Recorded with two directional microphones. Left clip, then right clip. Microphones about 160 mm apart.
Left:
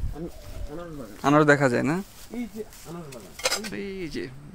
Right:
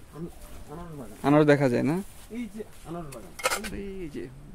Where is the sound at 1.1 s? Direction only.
20° right (ahead or behind).